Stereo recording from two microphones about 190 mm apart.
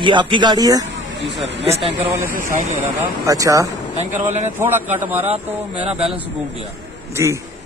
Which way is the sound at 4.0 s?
35° right (ahead or behind).